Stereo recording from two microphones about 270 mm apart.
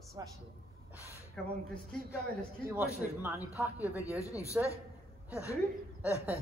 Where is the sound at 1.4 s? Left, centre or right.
Centre.